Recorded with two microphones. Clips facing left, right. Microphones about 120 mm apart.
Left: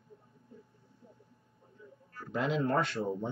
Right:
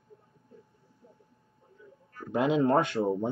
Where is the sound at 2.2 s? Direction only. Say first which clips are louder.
Right 6 dB; 15° right (ahead or behind).